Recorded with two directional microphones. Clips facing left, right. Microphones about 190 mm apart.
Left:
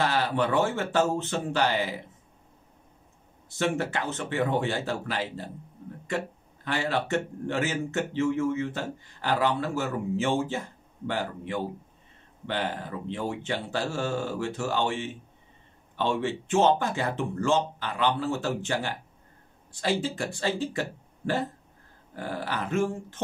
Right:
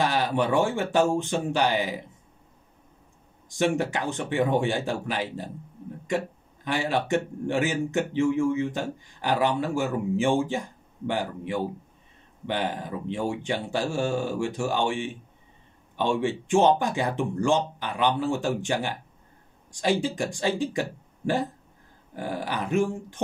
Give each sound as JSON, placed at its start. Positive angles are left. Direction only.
{"t": 0.0, "sound": "a man's voice", "side_deg": -15}
{"t": 3.4, "sound": "a man's voice", "side_deg": -15}
{"t": 22.1, "sound": "a man's voice", "side_deg": -15}